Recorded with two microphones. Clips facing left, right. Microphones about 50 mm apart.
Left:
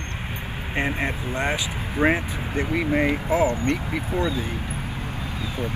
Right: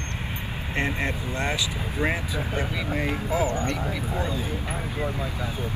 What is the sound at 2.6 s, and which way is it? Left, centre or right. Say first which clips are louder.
Speech: left 8 dB; left.